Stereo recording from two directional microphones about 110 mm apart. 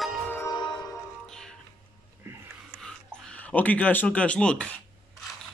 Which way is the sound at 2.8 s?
5° left (ahead or behind).